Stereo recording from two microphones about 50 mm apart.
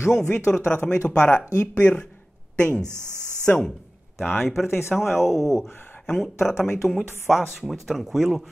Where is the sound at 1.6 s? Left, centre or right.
Left.